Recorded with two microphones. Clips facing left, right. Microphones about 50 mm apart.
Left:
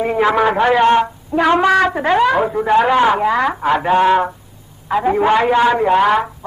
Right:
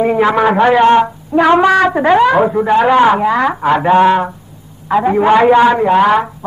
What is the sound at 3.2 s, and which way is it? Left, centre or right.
Speech, centre.